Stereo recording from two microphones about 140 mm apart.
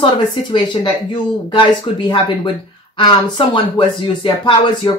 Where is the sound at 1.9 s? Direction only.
40° left (ahead or behind).